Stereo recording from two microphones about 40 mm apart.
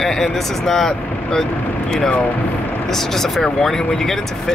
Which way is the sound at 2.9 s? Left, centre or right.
Centre.